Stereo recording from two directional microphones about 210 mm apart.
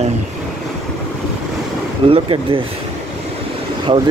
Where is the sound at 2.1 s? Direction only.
25° right (ahead or behind).